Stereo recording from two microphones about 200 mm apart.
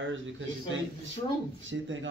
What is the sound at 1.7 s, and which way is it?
Speech, 65° right (ahead or behind).